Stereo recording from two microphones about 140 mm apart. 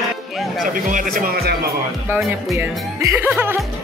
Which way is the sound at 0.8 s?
75° right (ahead or behind).